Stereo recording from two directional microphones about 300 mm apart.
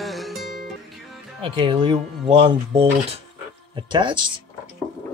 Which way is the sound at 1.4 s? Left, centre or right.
Centre.